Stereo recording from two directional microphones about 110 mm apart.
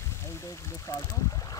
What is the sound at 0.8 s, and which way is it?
Boat, 30° left (ahead or behind).